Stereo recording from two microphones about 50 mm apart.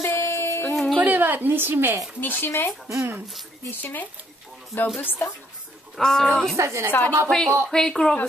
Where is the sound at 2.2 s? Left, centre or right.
Left.